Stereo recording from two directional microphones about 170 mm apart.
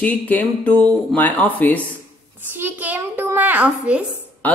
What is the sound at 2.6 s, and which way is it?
A child's voice, 10° right (ahead or behind).